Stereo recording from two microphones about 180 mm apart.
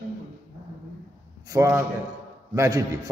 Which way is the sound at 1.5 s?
15° right (ahead or behind).